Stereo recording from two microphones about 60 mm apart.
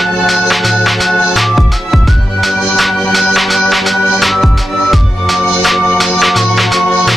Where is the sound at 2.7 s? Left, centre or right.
Centre.